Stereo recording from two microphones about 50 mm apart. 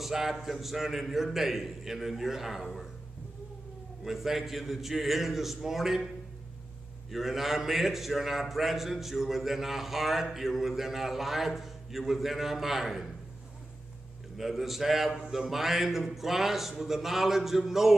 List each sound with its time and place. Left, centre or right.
0.0 s a man's voice: centre
4.0 s a man's voice: centre
7.1 s a man's voice: centre
14.3 s a man's voice: centre